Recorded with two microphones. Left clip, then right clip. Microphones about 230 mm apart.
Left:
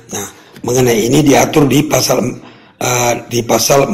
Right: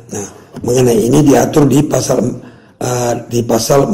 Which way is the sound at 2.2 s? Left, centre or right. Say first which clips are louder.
Right 1 dB; left.